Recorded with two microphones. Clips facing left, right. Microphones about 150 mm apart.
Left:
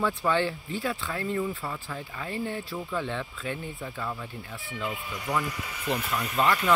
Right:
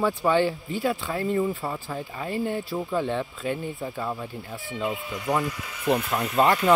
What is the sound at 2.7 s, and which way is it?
Speech, 25° right (ahead or behind).